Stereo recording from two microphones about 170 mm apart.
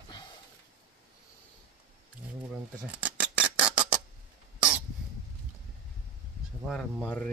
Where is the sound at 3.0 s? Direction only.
10° right (ahead or behind).